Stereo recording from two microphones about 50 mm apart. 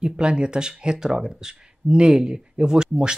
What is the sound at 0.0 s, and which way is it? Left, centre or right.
Speech, centre.